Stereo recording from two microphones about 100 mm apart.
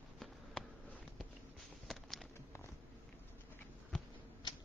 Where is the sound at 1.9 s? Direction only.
Centre (ahead or behind).